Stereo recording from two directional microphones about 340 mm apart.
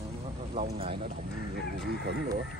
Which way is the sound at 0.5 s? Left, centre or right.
Centre.